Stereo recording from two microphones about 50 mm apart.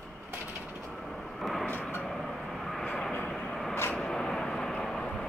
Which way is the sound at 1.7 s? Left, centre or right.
Left.